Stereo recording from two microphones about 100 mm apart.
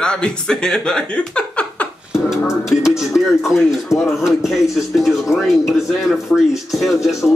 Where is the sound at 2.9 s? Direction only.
Centre (ahead or behind).